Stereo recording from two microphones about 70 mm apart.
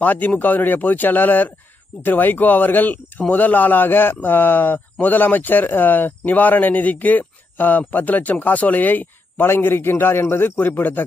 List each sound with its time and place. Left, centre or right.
0.0 s a man's voice: left